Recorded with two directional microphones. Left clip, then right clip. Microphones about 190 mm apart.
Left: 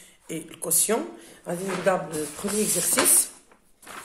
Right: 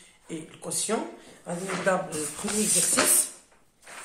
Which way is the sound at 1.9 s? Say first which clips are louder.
Left 2 dB; 30° left (ahead or behind).